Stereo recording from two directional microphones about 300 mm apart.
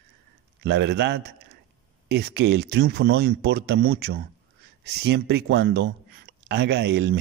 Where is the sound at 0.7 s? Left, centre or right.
Right.